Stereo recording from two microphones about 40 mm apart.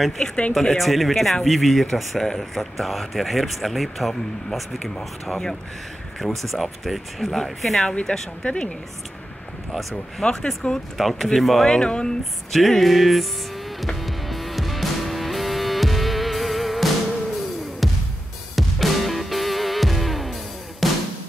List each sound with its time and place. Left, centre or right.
0.5 s speech: centre
5.2 s speech: centre
6.2 s speech: centre
7.8 s speech: centre
10.2 s speech: centre
11.0 s speech: centre
11.7 s speech: left
12.5 s speech: centre
14.0 s music: centre
18.6 s music: centre